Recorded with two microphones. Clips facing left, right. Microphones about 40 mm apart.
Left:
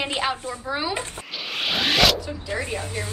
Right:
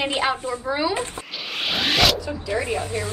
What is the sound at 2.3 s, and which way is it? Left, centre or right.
Speech, right.